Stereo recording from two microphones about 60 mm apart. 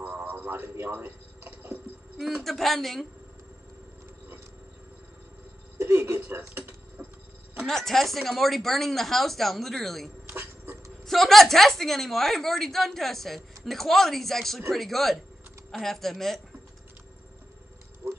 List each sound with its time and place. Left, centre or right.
0.0 s a man's voice: right
2.4 s a woman's voice: centre
5.8 s speech: right
7.0 s tick-tock: right
7.6 s a woman's voice: centre
10.3 s dog: right
11.1 s a woman's voice: centre
18.0 s a sound: right